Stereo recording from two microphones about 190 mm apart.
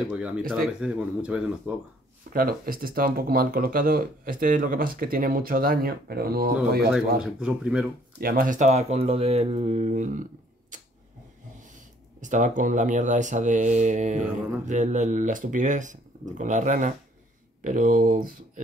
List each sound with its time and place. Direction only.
0.1 s a man's voice: 5° right (ahead or behind)
2.3 s speech: 50° right (ahead or behind)
7.2 s a man's voice: 5° right (ahead or behind)
8.2 s speech: 50° right (ahead or behind)
10.7 s a sound: 40° right (ahead or behind)
11.6 s speech: 40° right (ahead or behind)